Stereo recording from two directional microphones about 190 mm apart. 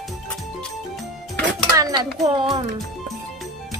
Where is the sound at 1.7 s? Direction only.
20° right (ahead or behind).